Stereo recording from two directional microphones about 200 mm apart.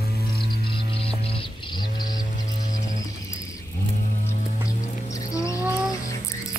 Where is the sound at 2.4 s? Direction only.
40° left (ahead or behind).